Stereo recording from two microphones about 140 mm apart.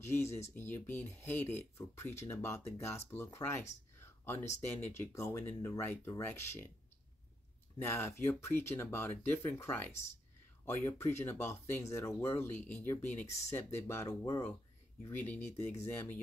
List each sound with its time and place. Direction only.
0.0 s speech: 20° left (ahead or behind)
4.0 s a sound: 15° left (ahead or behind)
4.6 s speech: 15° left (ahead or behind)
7.8 s speech: 20° left (ahead or behind)
15.0 s speech: 15° left (ahead or behind)